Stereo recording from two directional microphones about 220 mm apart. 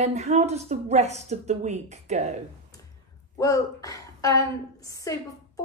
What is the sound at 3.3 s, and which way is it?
A woman's voice, 15° left (ahead or behind).